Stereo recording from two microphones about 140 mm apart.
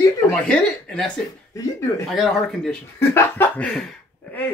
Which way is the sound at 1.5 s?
20° left (ahead or behind).